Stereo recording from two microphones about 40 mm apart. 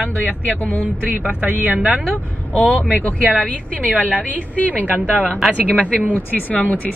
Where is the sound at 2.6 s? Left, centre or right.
Left.